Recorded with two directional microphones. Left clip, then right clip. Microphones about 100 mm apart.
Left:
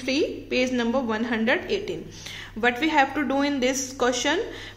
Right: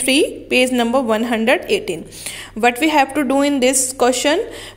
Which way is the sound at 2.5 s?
90° right.